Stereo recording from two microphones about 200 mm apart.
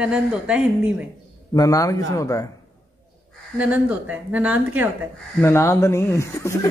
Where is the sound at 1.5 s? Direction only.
15° left (ahead or behind).